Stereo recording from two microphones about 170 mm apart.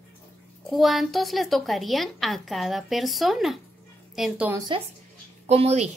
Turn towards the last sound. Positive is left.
turn(degrees=-40)  # may be behind; listen again after turning